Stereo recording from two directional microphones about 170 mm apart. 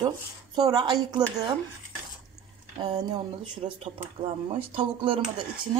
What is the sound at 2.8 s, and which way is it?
Speech, 30° right (ahead or behind).